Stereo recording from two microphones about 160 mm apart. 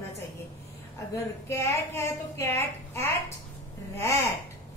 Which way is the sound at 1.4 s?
15° left (ahead or behind).